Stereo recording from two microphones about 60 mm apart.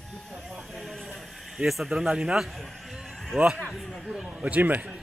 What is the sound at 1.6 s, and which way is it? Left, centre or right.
Speech, centre.